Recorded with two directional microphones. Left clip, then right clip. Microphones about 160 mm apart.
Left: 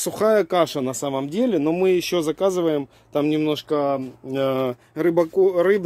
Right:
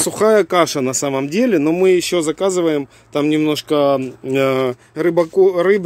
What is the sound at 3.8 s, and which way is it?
Speech, 50° right (ahead or behind).